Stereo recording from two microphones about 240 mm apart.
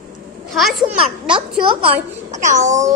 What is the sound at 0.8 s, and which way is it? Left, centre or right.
A child's voice, right.